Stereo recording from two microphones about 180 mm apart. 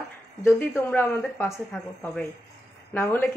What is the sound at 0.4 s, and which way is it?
Speech, 15° left (ahead or behind).